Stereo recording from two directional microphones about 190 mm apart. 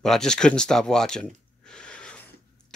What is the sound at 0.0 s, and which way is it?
Speech, 5° left (ahead or behind).